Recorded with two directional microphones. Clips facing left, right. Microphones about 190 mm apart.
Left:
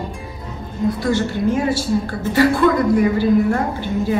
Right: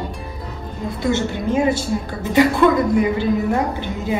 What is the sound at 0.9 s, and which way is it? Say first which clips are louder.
Speech: left 1 dB; 20° right (ahead or behind).